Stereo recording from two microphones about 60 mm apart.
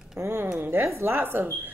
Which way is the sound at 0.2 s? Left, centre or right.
Right.